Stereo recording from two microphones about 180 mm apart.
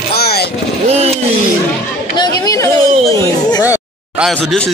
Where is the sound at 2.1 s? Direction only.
20° left (ahead or behind).